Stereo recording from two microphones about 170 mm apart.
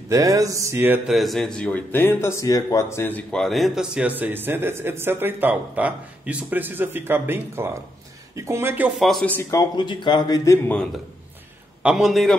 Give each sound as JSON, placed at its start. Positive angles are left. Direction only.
{"t": 0.1, "sound": "mantra", "side_deg": -20}
{"t": 1.1, "sound": "speech", "side_deg": 0}
{"t": 8.9, "sound": "a man's voice", "side_deg": 0}
{"t": 11.8, "sound": "a man's voice", "side_deg": -5}